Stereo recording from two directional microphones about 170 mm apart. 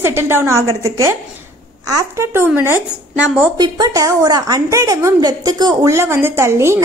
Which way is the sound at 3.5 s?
25° right (ahead or behind).